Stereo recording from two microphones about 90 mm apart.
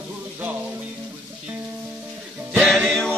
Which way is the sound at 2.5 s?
5° left (ahead or behind).